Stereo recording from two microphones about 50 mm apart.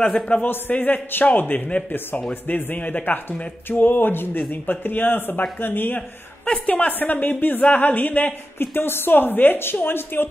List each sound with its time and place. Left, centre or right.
0.0 s a man's voice: centre
0.4 s a woman's voice: left
6.4 s a woman's voice: centre
6.7 s speech: left
8.5 s a woman's voice: left